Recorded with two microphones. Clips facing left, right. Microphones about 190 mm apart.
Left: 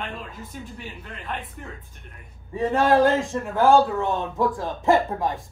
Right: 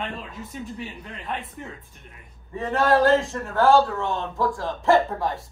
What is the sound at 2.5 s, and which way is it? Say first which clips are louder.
Speech: left 2 dB; 15° left (ahead or behind).